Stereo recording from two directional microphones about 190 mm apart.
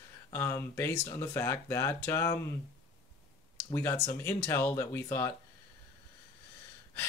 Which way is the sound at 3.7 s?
15° left (ahead or behind).